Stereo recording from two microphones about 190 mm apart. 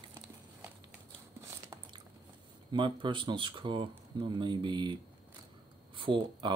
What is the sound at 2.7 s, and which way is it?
Speech, 25° right (ahead or behind).